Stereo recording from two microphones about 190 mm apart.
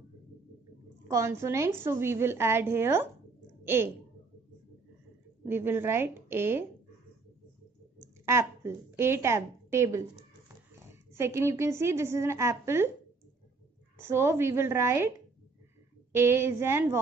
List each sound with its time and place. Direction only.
1.0 s a woman's voice: 15° right (ahead or behind)
5.4 s a woman's voice: 10° right (ahead or behind)
8.0 s a woman's voice: 15° right (ahead or behind)
13.9 s a woman's voice: 15° right (ahead or behind)
16.2 s a woman's voice: 10° right (ahead or behind)